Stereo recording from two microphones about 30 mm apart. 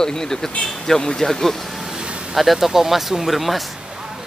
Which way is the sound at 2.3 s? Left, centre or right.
Centre.